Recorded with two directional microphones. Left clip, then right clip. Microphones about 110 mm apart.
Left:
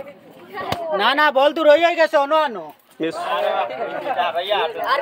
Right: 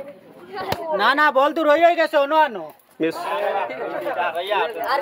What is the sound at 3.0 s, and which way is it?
Speech, 30° right (ahead or behind).